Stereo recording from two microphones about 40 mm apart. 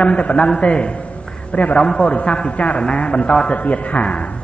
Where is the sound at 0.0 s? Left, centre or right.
Left.